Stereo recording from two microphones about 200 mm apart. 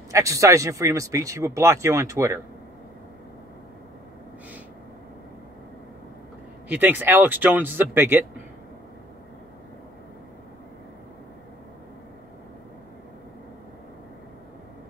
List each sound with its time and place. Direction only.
0.1 s speech: 15° right (ahead or behind)
6.7 s speech: 10° right (ahead or behind)